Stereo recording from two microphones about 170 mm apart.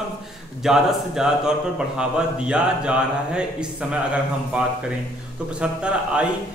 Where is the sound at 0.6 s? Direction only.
5° right (ahead or behind).